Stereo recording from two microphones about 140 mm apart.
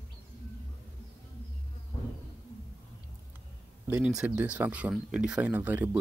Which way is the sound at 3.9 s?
5° right (ahead or behind).